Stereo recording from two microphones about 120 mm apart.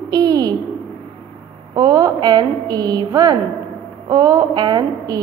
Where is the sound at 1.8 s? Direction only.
30° right (ahead or behind).